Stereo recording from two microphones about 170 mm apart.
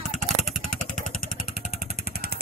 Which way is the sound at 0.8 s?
50° left (ahead or behind).